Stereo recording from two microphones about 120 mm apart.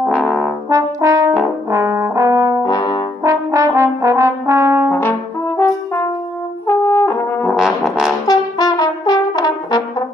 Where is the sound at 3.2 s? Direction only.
25° right (ahead or behind).